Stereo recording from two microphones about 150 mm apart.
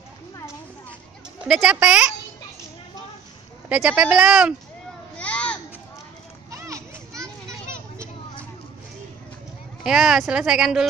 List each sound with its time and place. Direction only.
1.4 s speech: 5° right (ahead or behind)
3.6 s speech: 10° right (ahead or behind)
5.1 s a sound: 10° left (ahead or behind)
6.5 s children playing: 20° right (ahead or behind)
9.8 s speech: 5° right (ahead or behind)